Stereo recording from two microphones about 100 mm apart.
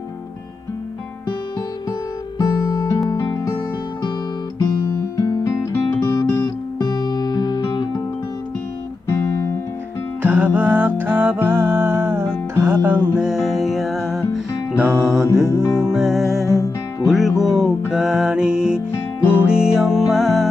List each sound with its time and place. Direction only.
1.9 s music: 40° left (ahead or behind)
4.6 s music: 30° left (ahead or behind)
9.1 s guitar: 30° left (ahead or behind)
10.2 s music: 20° right (ahead or behind)
13.2 s music: 5° right (ahead or behind)
15.4 s music: 25° left (ahead or behind)
15.8 s music: 5° right (ahead or behind)
16.4 s music: 30° left (ahead or behind)
17.4 s music: centre (ahead or behind)